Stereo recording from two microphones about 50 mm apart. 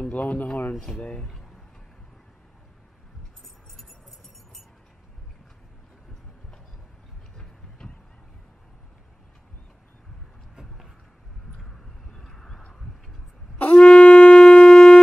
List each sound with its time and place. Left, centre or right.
0.0 s speech: left
1.2 s a sound: centre
3.4 s music: centre
10.5 s vehicle: centre
11.5 s vehicle: centre
13.6 s shofar: left